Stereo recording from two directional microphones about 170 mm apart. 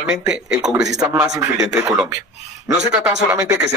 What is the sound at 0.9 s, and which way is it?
Speech, 20° right (ahead or behind).